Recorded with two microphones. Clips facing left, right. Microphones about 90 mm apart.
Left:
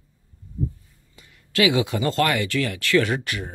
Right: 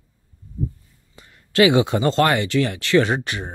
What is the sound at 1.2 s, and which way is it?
Speech, 35° right (ahead or behind).